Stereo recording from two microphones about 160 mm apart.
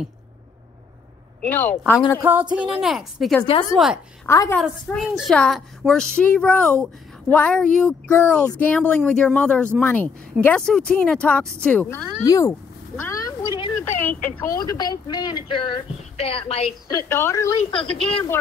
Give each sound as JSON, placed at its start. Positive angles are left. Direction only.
{"t": 1.5, "sound": "a woman's voice", "side_deg": 10}
{"t": 2.7, "sound": "a woman's voice", "side_deg": 0}
{"t": 4.3, "sound": "speech", "side_deg": 20}
{"t": 4.6, "sound": "a woman's voice", "side_deg": 0}
{"t": 13.0, "sound": "a sound", "side_deg": 20}
{"t": 13.6, "sound": "a sound", "side_deg": 30}
{"t": 13.8, "sound": "a woman's voice", "side_deg": 10}
{"t": 14.6, "sound": "speech", "side_deg": 25}
{"t": 16.8, "sound": "speech", "side_deg": 20}
{"t": 17.6, "sound": "speech", "side_deg": 30}